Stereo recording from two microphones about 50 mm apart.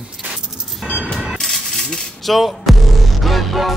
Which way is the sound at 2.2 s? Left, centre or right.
Centre.